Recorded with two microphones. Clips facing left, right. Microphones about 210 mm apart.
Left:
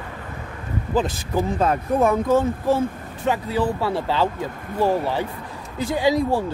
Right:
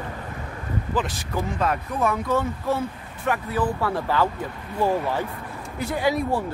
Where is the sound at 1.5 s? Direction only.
30° left (ahead or behind).